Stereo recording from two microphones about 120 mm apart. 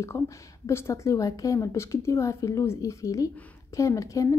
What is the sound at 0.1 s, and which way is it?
A woman's voice, 30° left (ahead or behind).